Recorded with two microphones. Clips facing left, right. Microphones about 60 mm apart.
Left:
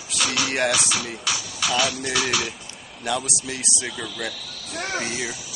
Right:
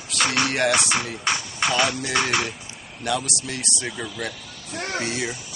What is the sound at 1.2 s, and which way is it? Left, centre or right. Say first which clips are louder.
Speech: right 3 dB; right.